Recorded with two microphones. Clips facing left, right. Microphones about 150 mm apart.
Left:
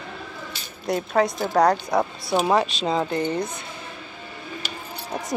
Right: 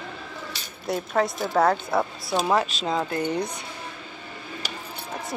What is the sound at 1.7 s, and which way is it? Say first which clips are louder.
Speech: left 2 dB; 15° left (ahead or behind).